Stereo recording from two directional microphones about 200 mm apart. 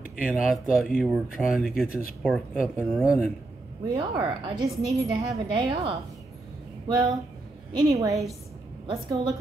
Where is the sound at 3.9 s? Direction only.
25° right (ahead or behind).